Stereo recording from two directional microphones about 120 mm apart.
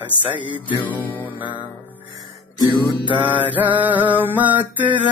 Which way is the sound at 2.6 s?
40° left (ahead or behind).